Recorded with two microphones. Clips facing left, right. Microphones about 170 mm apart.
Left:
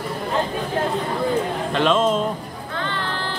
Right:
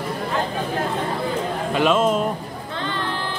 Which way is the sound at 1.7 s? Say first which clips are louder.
Right 1 dB; 5° right (ahead or behind).